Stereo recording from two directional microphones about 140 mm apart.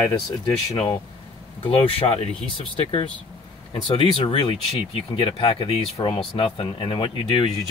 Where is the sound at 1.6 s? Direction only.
45° left (ahead or behind).